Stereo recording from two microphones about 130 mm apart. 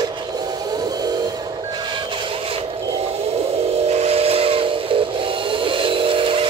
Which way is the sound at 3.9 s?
50° right (ahead or behind).